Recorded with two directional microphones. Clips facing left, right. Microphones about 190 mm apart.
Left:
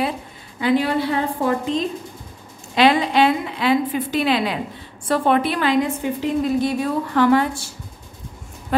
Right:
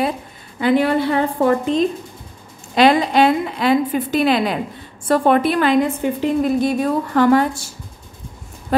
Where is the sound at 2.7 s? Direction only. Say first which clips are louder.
Right 2 dB; 45° right (ahead or behind).